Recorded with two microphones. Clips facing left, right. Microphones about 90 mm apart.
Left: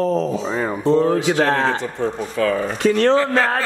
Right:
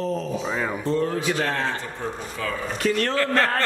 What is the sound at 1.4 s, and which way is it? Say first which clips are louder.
Speech: left 8 dB; 40° left (ahead or behind).